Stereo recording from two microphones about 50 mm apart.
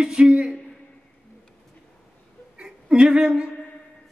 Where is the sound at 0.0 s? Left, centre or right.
Centre.